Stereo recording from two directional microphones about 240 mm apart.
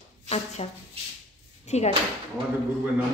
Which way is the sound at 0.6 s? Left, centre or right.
Left.